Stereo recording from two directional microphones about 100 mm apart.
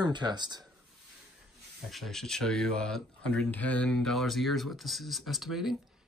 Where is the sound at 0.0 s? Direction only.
45° right (ahead or behind).